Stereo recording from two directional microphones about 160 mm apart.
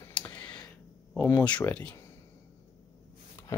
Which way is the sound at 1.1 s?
10° left (ahead or behind).